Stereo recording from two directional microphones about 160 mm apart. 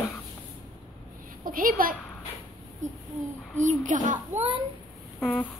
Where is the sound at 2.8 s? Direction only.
50° right (ahead or behind).